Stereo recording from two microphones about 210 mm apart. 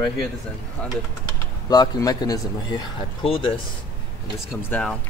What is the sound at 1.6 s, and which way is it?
Speech, 20° left (ahead or behind).